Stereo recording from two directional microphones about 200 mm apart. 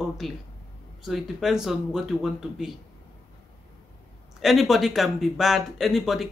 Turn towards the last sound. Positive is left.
turn(degrees=0)  # may be behind; listen again after turning